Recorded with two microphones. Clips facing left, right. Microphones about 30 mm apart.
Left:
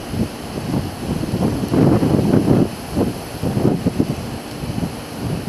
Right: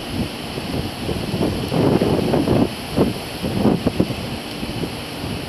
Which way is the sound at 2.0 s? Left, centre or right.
Right.